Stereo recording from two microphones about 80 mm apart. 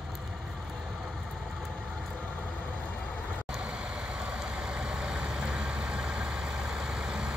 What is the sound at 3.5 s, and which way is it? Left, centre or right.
Vehicle, centre.